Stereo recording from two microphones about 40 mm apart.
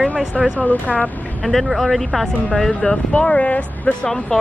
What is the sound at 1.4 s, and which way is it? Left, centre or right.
Speech, centre.